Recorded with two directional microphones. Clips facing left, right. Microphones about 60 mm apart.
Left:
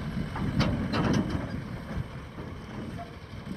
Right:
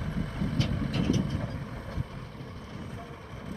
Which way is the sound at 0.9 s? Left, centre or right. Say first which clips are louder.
Left 1 dB; left.